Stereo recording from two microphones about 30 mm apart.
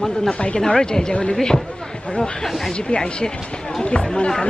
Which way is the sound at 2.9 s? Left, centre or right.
Left.